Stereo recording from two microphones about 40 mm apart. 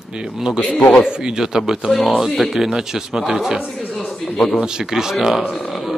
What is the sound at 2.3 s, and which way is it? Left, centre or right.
Speech, centre.